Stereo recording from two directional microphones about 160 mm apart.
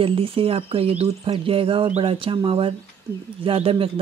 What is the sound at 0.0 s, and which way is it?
Speech, 35° right (ahead or behind).